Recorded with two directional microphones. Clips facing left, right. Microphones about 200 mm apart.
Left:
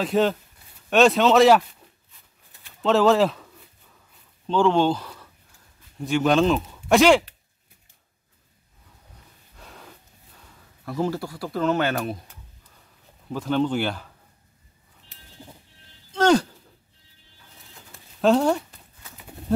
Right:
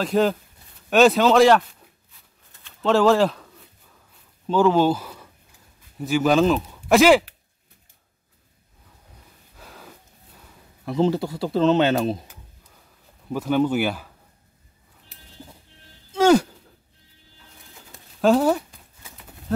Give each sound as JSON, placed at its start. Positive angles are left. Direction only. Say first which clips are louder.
{"t": 0.0, "sound": "a man's voice", "louder": "right 1 dB", "side_deg": 0}
{"t": 2.8, "sound": "a man's voice", "louder": "right 1 dB", "side_deg": 0}
{"t": 4.5, "sound": "a man's voice", "louder": "right 2 dB", "side_deg": -5}
{"t": 9.6, "sound": "gasp", "louder": "right 1 dB", "side_deg": 0}
{"t": 10.9, "sound": "speech", "louder": "right 5 dB", "side_deg": -20}
{"t": 13.3, "sound": "speech", "louder": "right 2 dB", "side_deg": -10}
{"t": 16.1, "sound": "a sound", "louder": "right 3 dB", "side_deg": -10}
{"t": 18.2, "sound": "speech", "louder": "right 1 dB", "side_deg": 0}